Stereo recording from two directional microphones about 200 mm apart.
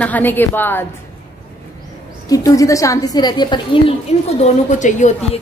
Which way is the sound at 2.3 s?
15° left (ahead or behind).